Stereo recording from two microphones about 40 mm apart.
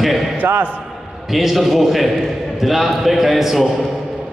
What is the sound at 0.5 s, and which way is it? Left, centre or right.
Speech, right.